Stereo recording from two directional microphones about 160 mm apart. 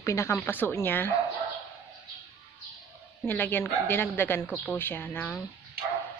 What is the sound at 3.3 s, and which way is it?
Speech, 10° left (ahead or behind).